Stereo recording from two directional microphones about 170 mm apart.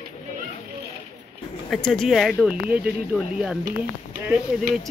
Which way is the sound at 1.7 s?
Centre (ahead or behind).